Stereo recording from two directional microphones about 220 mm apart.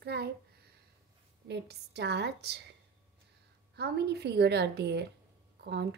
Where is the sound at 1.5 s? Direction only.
50° right (ahead or behind).